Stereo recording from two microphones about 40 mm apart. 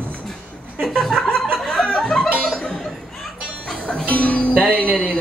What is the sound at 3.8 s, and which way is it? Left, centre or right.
Music, left.